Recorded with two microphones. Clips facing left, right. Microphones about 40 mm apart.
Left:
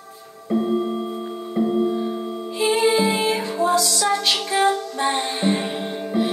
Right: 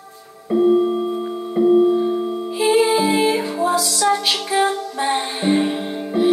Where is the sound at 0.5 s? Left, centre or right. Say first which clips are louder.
Right 6 dB; centre.